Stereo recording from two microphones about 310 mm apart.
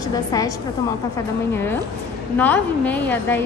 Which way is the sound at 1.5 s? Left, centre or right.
Centre.